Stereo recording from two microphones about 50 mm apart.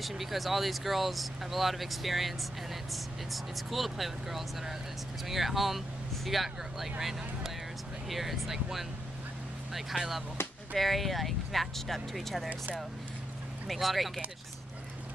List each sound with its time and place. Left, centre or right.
0.0 s speech: centre
12.4 s speech: right
13.7 s speech: centre